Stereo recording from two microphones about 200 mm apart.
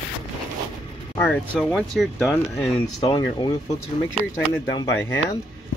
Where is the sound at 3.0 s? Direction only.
20° left (ahead or behind).